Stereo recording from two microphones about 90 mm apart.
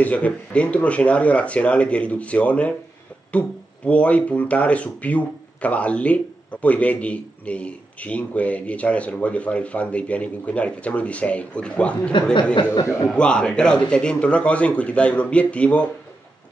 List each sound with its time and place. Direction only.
0.0 s speech: 15° left (ahead or behind)
13.1 s speech: 10° left (ahead or behind)